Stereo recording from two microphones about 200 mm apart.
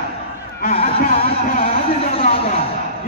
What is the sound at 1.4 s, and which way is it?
Speech, 45° left (ahead or behind).